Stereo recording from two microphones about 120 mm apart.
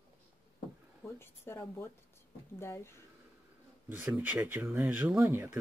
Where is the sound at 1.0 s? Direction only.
20° left (ahead or behind).